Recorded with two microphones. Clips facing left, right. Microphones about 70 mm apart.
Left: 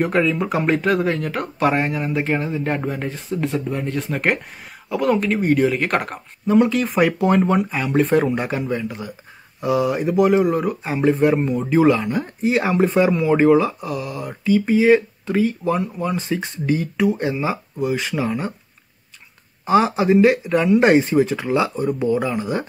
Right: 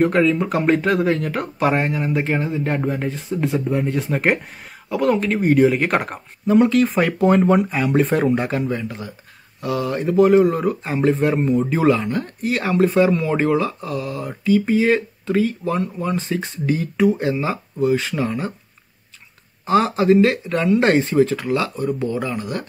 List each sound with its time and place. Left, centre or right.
0.0 s speech: centre
9.6 s speech: centre
12.4 s speech: centre
19.6 s speech: centre
21.4 s speech: centre